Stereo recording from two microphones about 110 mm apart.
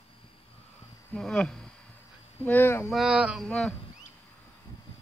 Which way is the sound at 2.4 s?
20° left (ahead or behind).